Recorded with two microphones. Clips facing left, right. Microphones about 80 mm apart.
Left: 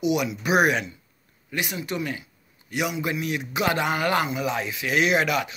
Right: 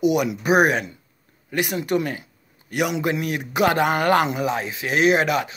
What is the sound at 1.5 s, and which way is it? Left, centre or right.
A man's voice, right.